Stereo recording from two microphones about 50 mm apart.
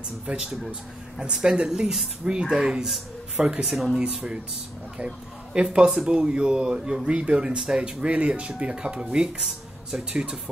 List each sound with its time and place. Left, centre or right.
0.3 s speech: centre
4.0 s speech: right
9.4 s speech: centre
10.1 s speech: centre